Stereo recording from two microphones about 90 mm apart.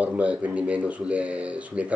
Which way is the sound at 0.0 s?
15° right (ahead or behind).